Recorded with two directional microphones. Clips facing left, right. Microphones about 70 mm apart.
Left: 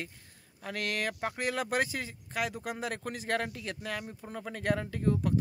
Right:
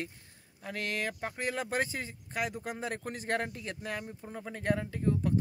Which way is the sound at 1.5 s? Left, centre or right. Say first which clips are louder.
Left 2 dB; right.